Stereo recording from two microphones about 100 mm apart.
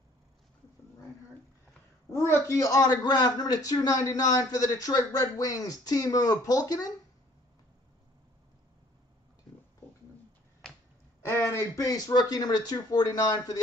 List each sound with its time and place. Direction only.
2.0 s a man's voice: 25° left (ahead or behind)
11.2 s a man's voice: 25° left (ahead or behind); by 13.6 s 40° left (ahead or behind)